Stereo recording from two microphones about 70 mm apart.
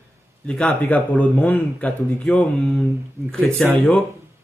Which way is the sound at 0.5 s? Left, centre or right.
Centre.